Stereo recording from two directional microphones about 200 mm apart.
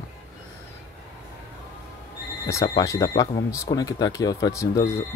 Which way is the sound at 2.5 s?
15° left (ahead or behind).